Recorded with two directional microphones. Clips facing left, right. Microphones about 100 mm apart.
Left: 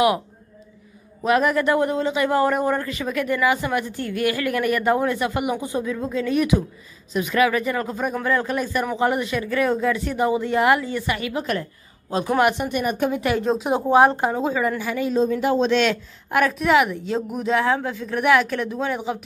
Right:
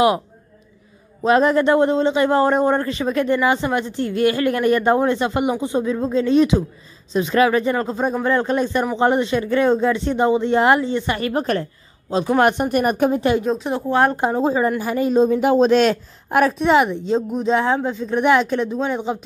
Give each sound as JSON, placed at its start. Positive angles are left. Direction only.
{"t": 1.2, "sound": "a man's voice", "side_deg": -30}
{"t": 11.1, "sound": "a woman's voice", "side_deg": -40}
{"t": 12.1, "sound": "a man's voice", "side_deg": -25}
{"t": 12.4, "sound": "speech", "side_deg": -40}
{"t": 13.1, "sound": "a woman's voice", "side_deg": -30}
{"t": 13.6, "sound": "speech", "side_deg": 15}
{"t": 14.4, "sound": "a woman's voice", "side_deg": -35}
{"t": 14.8, "sound": "a man's voice", "side_deg": -45}